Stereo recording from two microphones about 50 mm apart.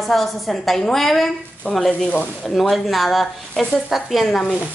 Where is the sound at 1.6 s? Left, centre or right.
Right.